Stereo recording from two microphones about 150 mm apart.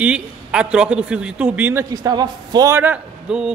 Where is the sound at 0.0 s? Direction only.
5° right (ahead or behind).